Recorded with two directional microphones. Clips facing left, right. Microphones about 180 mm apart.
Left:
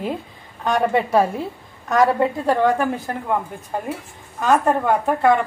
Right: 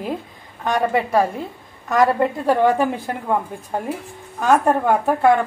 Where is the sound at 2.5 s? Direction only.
15° right (ahead or behind).